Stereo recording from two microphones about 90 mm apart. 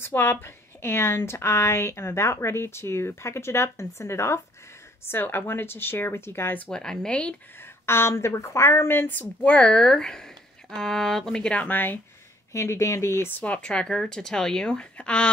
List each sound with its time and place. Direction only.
0.0 s a woman's voice: 25° left (ahead or behind)
6.7 s a woman's voice: 10° left (ahead or behind)
7.6 s a woman's voice: 25° left (ahead or behind)
12.5 s speech: 35° left (ahead or behind)
13.4 s a woman's voice: 10° left (ahead or behind)